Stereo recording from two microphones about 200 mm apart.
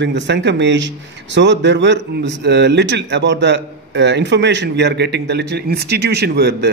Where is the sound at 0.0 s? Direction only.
60° right (ahead or behind).